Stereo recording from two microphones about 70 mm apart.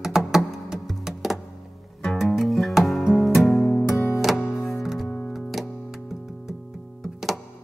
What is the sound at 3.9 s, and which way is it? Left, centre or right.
Music, left.